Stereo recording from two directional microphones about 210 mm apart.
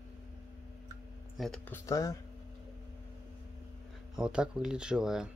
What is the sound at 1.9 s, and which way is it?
Speech, 15° left (ahead or behind).